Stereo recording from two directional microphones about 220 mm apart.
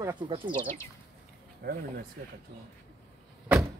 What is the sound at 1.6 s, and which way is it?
Speech, 45° right (ahead or behind).